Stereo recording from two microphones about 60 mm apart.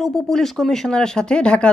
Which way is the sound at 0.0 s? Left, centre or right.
Centre.